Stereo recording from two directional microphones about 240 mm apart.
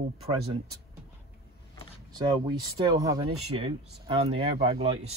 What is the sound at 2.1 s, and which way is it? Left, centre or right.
Speech, centre.